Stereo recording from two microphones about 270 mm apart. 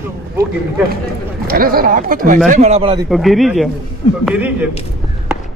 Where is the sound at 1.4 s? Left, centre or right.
Right.